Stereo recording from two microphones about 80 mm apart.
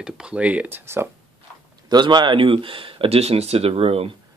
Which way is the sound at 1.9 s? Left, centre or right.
Right.